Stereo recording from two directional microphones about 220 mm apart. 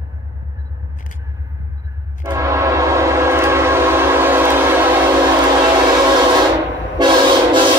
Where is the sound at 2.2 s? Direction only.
15° right (ahead or behind).